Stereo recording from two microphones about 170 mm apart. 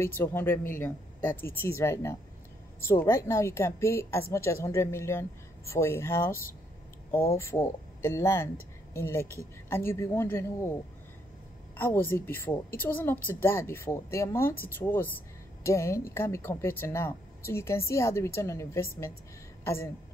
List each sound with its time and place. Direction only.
0.0 s speech: 15° left (ahead or behind)
7.3 s speech: 15° left (ahead or behind)
11.7 s a woman's voice: 15° left (ahead or behind)